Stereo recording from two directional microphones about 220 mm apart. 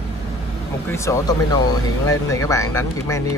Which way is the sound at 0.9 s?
15° left (ahead or behind).